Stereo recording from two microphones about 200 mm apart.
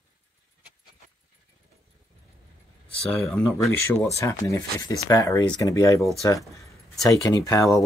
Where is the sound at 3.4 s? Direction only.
15° left (ahead or behind).